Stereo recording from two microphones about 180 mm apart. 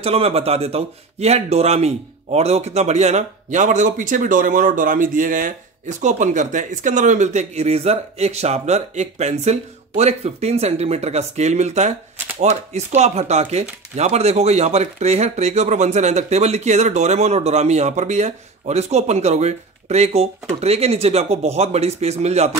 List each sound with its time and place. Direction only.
0.0 s a man's voice: 35° right (ahead or behind)